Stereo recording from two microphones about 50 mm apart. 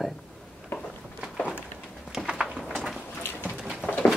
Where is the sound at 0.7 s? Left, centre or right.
Left.